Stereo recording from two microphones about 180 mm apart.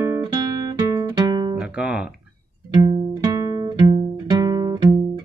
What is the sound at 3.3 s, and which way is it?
Music, 20° right (ahead or behind).